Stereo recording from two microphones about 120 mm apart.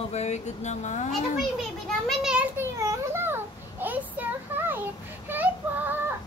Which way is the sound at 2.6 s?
25° right (ahead or behind).